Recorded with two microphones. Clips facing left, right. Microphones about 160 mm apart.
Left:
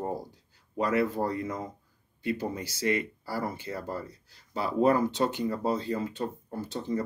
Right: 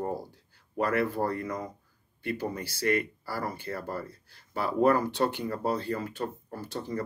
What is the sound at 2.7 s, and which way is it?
Speech, 20° left (ahead or behind).